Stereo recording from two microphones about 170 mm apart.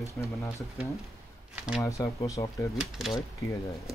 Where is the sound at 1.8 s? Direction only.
20° left (ahead or behind).